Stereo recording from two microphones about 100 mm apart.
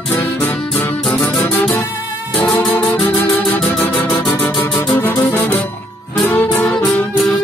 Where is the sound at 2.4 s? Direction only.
5° left (ahead or behind).